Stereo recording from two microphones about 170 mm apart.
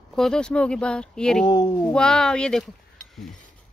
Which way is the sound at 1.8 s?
5° left (ahead or behind).